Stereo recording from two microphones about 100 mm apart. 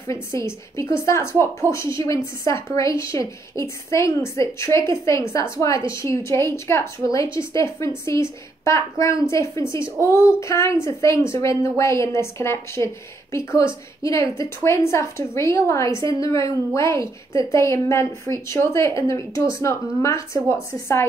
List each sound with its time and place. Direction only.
0.1 s a woman's voice: 30° left (ahead or behind)